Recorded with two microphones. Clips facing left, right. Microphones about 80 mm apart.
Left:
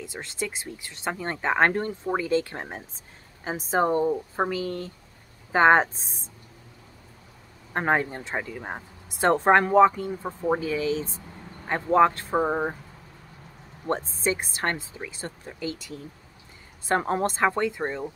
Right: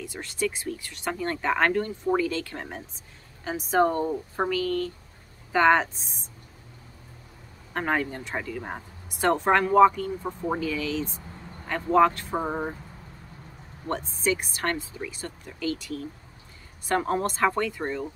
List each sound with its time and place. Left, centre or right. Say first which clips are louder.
0.0 s speech: right 3 dB; left
7.7 s speech: left 3 dB; left
9.2 s speech: left 3 dB; left
13.8 s speech: left 1 dB; left